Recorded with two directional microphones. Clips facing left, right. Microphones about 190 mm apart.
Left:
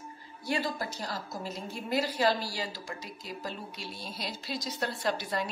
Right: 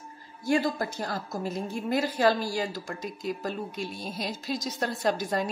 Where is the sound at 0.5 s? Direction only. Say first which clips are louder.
Right 6 dB; 50° right (ahead or behind).